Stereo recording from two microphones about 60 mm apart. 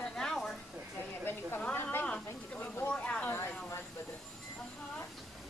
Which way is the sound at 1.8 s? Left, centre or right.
Left.